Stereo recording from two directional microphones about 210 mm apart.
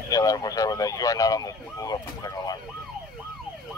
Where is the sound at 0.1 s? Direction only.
15° left (ahead or behind).